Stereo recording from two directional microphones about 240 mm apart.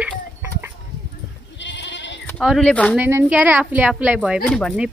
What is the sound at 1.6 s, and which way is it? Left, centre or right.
Goat, left.